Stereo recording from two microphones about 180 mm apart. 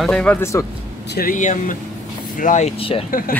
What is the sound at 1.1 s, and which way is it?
Speech, 55° left (ahead or behind).